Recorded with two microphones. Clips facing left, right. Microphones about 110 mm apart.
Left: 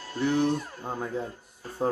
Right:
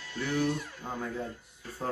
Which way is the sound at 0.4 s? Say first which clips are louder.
Left 4 dB; 40° left (ahead or behind).